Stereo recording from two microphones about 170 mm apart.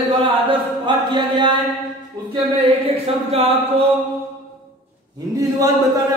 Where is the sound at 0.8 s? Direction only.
30° right (ahead or behind).